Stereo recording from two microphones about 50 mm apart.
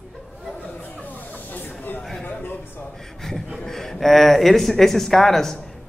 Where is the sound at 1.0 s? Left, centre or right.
Left.